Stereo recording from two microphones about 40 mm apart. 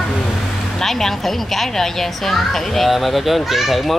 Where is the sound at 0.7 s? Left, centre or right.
Centre.